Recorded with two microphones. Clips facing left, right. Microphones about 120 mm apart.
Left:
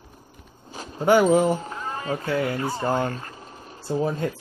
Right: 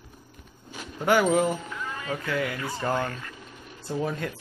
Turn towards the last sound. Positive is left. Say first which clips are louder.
# left 5 dB
turn(degrees=30)  # may be behind; listen again after turning